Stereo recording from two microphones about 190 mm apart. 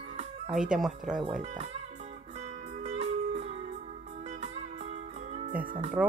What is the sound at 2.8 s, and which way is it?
Music, 35° right (ahead or behind).